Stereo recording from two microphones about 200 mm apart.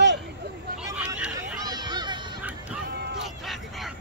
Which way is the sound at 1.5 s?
20° right (ahead or behind).